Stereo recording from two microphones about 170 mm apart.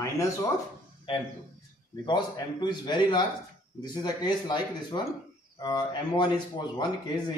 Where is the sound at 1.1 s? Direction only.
30° left (ahead or behind).